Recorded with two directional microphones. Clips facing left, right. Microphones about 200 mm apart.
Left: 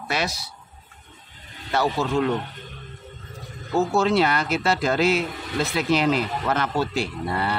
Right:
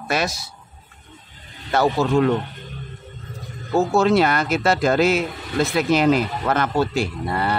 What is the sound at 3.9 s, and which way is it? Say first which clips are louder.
Speech: right 4 dB; 50° right (ahead or behind).